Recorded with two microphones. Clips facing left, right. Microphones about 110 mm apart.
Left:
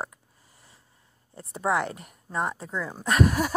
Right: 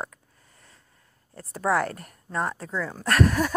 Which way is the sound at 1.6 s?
Centre (ahead or behind).